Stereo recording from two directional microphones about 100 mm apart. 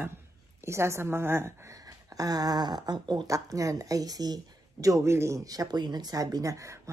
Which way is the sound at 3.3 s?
35° right (ahead or behind).